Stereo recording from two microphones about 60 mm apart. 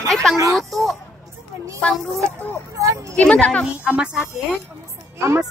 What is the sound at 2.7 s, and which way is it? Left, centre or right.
Speech, right.